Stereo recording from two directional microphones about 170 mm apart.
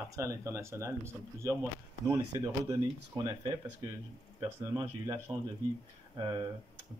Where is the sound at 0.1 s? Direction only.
15° right (ahead or behind).